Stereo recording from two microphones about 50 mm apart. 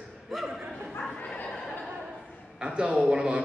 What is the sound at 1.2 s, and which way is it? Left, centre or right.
Speech, left.